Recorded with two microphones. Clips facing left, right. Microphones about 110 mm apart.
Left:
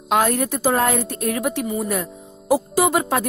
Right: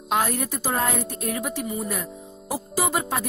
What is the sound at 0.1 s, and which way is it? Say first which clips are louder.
A woman's voice: left 5 dB; 80° left.